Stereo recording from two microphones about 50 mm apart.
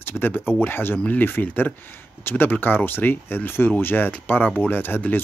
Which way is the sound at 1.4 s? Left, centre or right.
Left.